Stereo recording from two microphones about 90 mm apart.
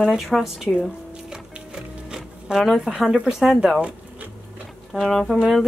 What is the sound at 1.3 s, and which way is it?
Music, 5° right (ahead or behind).